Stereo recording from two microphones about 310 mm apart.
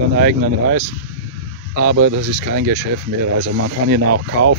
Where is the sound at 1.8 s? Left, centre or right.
Right.